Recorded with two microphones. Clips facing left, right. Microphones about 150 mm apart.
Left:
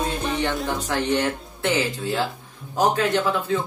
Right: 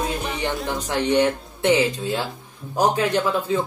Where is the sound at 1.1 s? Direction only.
20° right (ahead or behind).